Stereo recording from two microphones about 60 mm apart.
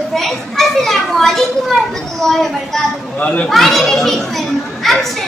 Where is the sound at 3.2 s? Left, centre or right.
Left.